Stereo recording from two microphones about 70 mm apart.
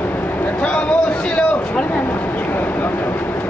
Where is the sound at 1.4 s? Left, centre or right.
Centre.